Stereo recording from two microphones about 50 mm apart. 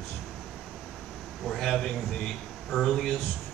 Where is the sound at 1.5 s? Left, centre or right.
Centre.